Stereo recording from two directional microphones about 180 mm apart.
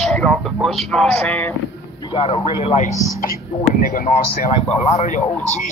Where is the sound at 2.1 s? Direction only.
30° left (ahead or behind).